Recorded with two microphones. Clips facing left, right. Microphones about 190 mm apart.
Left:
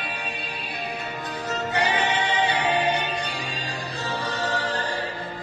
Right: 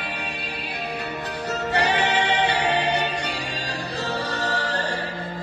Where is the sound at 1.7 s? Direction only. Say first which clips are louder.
Right 2 dB; 70° right (ahead or behind).